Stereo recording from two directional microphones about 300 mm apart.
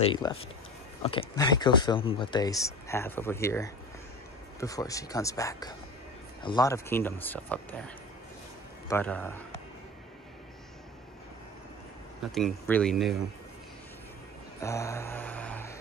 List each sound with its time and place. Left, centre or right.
0.0 s speech: centre
8.8 s speech: centre
12.3 s speech: centre
14.6 s music: centre